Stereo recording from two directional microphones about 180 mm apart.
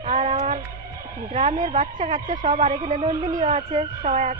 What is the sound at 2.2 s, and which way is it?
Speech, 45° right (ahead or behind).